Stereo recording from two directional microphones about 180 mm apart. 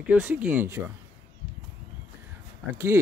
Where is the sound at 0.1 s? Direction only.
10° right (ahead or behind).